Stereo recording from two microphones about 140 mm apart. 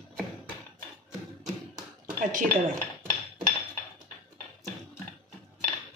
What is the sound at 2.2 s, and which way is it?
Speech, 70° right (ahead or behind).